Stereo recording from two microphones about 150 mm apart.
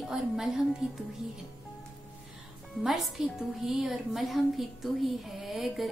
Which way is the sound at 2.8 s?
Centre (ahead or behind).